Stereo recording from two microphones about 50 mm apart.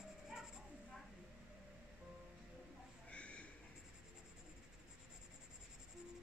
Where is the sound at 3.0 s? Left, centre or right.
Left.